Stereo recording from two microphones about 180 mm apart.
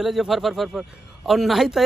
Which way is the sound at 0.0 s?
Centre (ahead or behind).